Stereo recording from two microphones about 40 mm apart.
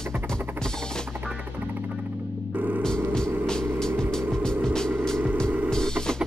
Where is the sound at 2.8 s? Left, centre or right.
Centre.